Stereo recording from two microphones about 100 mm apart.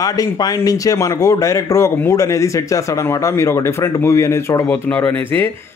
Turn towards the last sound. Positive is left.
turn(degrees=20)  # may be behind; listen again after turning